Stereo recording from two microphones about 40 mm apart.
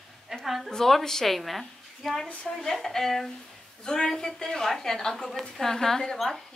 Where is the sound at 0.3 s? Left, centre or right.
Centre.